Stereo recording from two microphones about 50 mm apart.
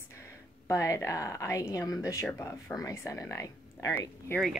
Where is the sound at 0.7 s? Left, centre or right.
Left.